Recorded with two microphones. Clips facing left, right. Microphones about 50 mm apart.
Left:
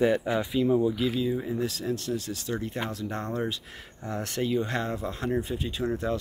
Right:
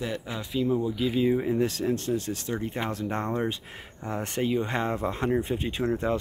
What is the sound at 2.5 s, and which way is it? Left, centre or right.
Speech, right.